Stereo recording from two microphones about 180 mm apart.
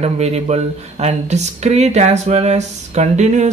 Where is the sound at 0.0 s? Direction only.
35° right (ahead or behind).